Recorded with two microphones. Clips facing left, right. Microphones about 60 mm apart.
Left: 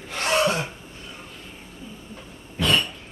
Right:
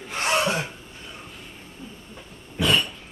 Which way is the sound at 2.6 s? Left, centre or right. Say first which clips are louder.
Even; centre.